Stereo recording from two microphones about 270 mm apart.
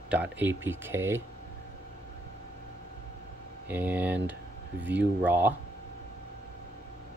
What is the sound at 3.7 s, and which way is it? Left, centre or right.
Speech, centre.